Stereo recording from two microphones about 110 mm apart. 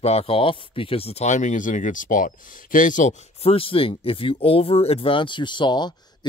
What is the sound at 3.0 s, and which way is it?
Speech, 90° left.